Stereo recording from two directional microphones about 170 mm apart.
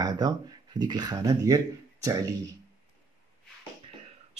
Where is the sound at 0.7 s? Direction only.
25° right (ahead or behind).